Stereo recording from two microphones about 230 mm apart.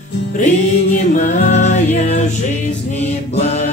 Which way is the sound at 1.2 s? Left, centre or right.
Left.